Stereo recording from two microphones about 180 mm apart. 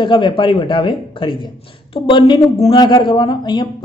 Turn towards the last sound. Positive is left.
turn(degrees=25)  # may be behind; listen again after turning